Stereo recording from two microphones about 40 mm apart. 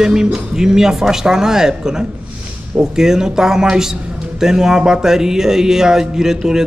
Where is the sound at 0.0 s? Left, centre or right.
Centre.